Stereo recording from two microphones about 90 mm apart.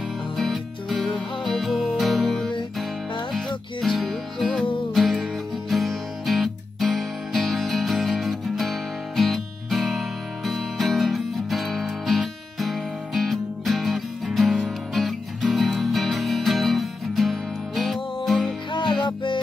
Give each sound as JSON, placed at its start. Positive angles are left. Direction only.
{"t": 0.4, "sound": "music", "side_deg": 0}
{"t": 18.7, "sound": "music", "side_deg": 60}